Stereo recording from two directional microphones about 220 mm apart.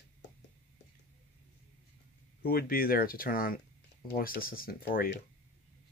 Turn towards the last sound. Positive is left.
turn(degrees=45)  # may be behind; listen again after turning